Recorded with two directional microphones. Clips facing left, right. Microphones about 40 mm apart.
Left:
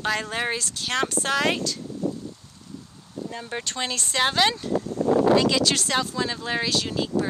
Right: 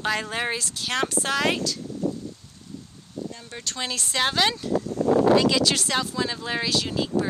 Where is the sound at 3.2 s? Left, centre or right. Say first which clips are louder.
Left 5 dB; left.